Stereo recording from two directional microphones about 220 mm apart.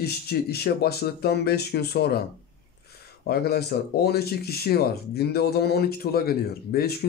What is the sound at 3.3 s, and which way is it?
Speech, 45° left (ahead or behind).